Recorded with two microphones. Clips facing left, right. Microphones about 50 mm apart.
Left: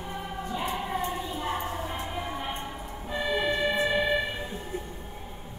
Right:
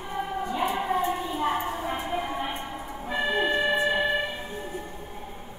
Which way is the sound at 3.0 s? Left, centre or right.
Right.